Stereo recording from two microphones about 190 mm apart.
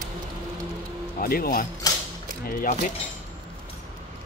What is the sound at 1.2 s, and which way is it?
Speech, 50° left (ahead or behind).